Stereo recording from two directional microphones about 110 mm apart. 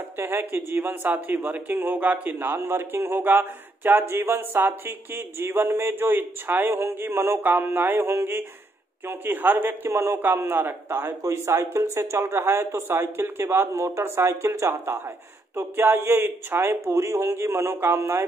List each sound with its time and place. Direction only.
0.2 s a man's voice: 20° right (ahead or behind)